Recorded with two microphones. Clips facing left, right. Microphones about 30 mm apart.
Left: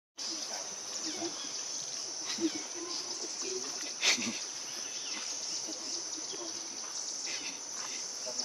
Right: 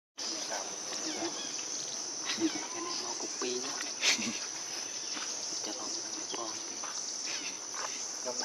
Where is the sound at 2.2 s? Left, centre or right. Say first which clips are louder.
Right 2 dB; right.